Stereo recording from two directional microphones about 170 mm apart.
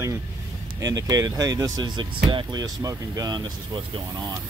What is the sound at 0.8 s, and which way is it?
Speech, 20° right (ahead or behind).